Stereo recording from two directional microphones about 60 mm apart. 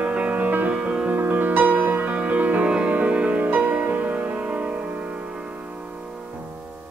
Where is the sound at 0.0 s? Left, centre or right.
Right.